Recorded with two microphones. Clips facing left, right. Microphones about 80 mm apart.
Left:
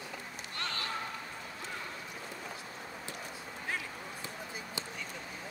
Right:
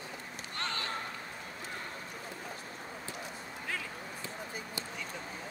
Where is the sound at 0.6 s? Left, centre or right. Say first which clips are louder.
Right 1 dB; right.